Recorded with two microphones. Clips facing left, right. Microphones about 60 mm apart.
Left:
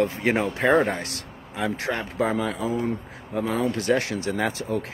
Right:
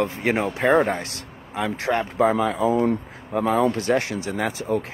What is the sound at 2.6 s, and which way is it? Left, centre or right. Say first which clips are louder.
Speech: right 6 dB; right.